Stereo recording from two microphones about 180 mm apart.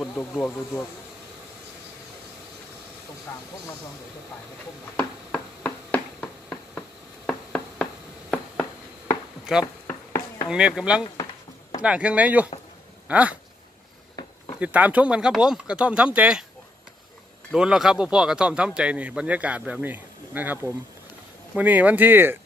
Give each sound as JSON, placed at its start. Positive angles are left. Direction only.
{"t": 4.9, "sound": "a sound", "side_deg": 5}
{"t": 9.5, "sound": "a man's voice", "side_deg": -5}
{"t": 9.8, "sound": "a sound", "side_deg": 15}
{"t": 10.5, "sound": "a man's voice", "side_deg": -5}
{"t": 14.6, "sound": "a man's voice", "side_deg": -10}
{"t": 17.5, "sound": "a man's voice", "side_deg": -5}